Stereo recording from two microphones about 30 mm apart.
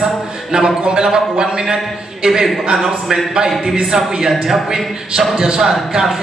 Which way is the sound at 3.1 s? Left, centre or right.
Right.